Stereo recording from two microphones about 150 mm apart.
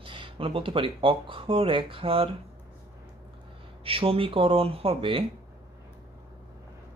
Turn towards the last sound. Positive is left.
turn(degrees=-40)  # may be behind; listen again after turning